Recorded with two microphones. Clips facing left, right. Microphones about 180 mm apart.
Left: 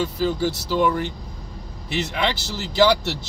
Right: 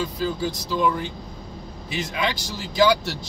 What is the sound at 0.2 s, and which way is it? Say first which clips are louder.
Speech: left 3 dB; 75° left (ahead or behind).